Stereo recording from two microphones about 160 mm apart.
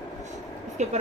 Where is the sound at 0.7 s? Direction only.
45° right (ahead or behind).